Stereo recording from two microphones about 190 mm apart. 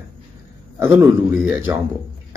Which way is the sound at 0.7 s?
10° right (ahead or behind).